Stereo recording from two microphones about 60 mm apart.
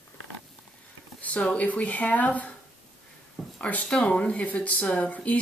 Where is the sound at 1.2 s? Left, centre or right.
Left.